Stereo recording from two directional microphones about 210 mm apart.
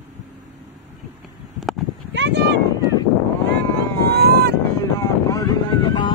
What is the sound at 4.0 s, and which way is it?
Boat, 50° right (ahead or behind).